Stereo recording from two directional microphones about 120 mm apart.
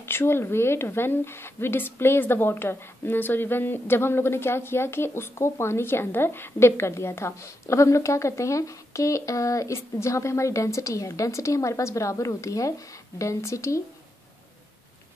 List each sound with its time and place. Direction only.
0.0 s a woman's voice: 20° left (ahead or behind)